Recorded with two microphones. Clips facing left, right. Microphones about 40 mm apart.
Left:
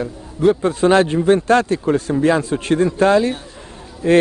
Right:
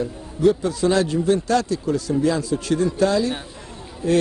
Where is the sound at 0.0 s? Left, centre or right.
Left.